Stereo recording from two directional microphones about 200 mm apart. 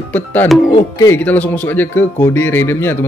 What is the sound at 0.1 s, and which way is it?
Speech, 10° left (ahead or behind).